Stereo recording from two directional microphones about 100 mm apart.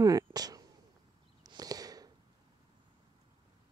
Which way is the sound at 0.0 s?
40° right (ahead or behind).